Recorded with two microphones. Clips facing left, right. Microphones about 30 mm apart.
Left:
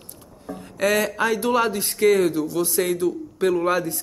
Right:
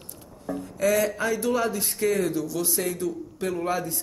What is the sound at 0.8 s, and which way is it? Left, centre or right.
Speech, left.